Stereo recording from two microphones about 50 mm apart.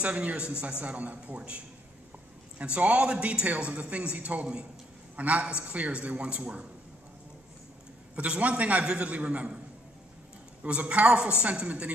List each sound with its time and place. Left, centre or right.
0.0 s a man's voice: right
2.6 s a man's voice: right
8.2 s a man's voice: right
10.6 s a man's voice: right